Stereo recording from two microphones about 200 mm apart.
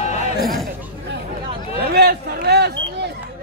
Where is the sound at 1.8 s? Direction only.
50° right (ahead or behind).